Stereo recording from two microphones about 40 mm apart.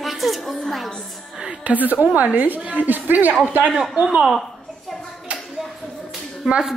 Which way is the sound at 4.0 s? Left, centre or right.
Right.